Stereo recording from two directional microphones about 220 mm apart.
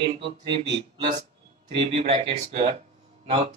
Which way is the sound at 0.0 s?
25° right (ahead or behind).